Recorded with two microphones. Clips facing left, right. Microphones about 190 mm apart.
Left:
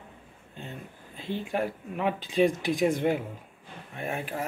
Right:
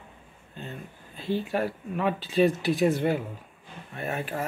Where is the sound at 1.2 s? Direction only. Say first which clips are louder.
Right 3 dB; 15° left (ahead or behind).